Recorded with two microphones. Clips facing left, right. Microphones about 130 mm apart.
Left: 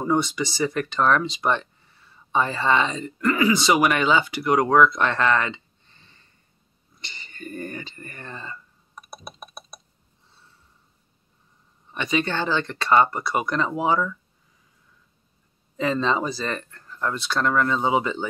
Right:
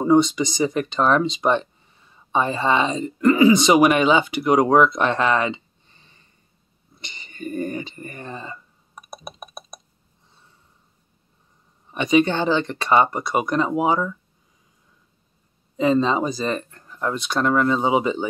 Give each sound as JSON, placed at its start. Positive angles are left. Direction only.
{"t": 0.0, "sound": "speech", "side_deg": -20}
{"t": 7.0, "sound": "a sound", "side_deg": -15}
{"t": 11.9, "sound": "speech", "side_deg": -15}
{"t": 15.8, "sound": "speech", "side_deg": -15}